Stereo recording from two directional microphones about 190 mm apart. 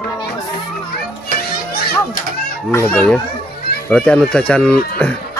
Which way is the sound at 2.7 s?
10° left (ahead or behind).